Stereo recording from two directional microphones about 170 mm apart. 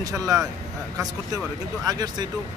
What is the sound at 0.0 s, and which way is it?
Speech, 20° right (ahead or behind).